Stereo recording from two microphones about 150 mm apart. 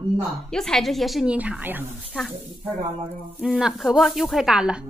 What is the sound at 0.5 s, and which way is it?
Speech, 5° left (ahead or behind).